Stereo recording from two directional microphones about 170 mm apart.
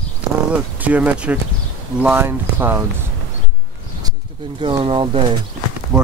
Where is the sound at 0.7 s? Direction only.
10° right (ahead or behind).